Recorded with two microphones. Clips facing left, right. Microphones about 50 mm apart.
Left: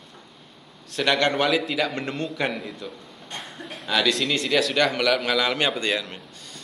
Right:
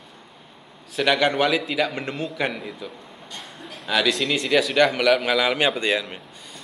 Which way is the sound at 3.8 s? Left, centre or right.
Centre.